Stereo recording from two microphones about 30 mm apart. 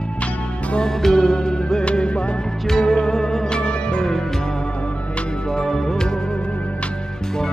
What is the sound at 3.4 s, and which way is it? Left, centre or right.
Music, left.